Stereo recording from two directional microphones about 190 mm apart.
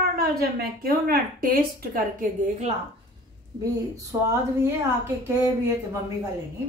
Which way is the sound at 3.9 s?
15° right (ahead or behind).